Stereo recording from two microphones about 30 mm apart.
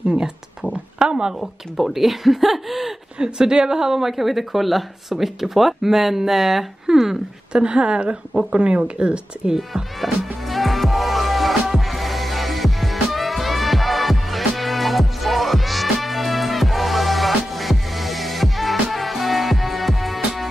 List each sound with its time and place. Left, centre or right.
0.0 s speech: right
1.8 s speech: centre
3.2 s a woman's voice: right; by 6.6 s centre
6.9 s speech: right
10.0 s music: centre